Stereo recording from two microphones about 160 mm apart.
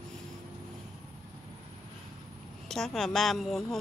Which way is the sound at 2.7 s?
Centre (ahead or behind).